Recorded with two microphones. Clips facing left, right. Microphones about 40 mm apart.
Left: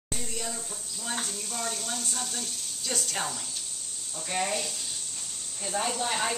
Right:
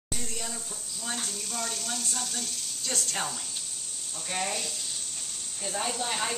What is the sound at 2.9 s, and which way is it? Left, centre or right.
A woman's voice, centre.